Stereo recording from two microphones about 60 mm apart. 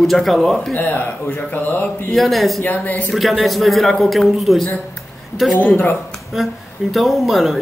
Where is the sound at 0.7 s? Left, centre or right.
Left.